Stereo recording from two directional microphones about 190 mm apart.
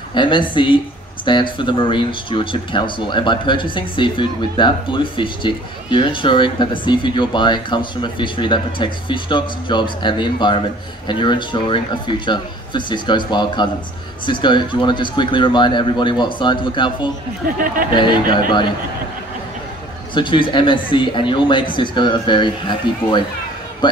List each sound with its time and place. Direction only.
0.1 s speech: 25° left (ahead or behind)
20.2 s speech: 25° left (ahead or behind)